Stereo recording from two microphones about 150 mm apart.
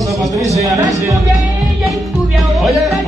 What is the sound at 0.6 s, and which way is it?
Speech, 20° right (ahead or behind).